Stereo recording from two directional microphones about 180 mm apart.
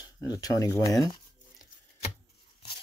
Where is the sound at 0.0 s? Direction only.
20° left (ahead or behind).